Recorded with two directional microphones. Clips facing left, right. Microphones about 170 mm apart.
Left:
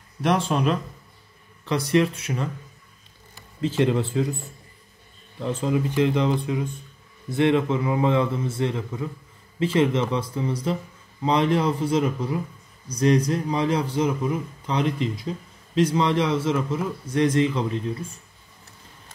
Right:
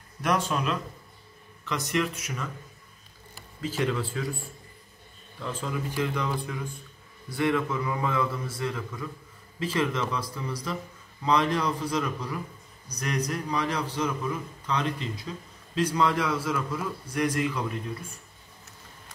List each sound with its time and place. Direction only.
0.2 s speech: 30° left (ahead or behind)
3.8 s a man's voice: 25° left (ahead or behind)
5.6 s a man's voice: 20° left (ahead or behind)
15.9 s a man's voice: 25° left (ahead or behind)